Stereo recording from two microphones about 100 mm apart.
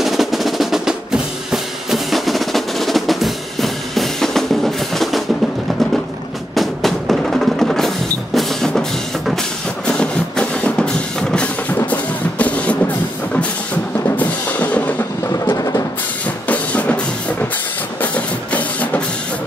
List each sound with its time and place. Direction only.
0.0 s percussion: centre (ahead or behind)
6.5 s music: centre (ahead or behind)
15.5 s music: 35° left (ahead or behind)
16.4 s music: 15° left (ahead or behind)